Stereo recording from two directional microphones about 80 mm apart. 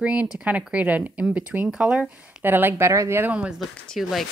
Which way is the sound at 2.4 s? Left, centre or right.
Right.